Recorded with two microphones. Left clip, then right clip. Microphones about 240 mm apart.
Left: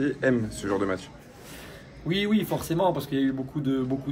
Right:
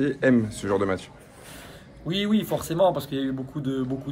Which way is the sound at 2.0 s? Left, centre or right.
Centre.